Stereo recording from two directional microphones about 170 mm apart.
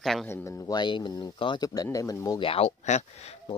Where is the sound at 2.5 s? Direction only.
35° left (ahead or behind).